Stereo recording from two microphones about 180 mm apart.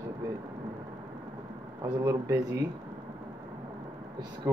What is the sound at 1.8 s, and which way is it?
Speech, 15° right (ahead or behind).